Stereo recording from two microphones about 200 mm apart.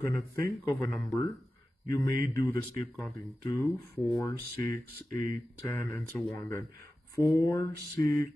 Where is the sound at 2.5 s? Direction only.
15° left (ahead or behind).